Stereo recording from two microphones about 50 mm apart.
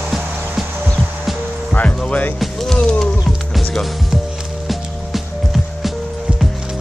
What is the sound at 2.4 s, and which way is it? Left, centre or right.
Music, centre.